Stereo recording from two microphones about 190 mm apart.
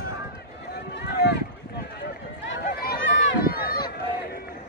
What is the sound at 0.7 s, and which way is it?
Run, 60° left (ahead or behind).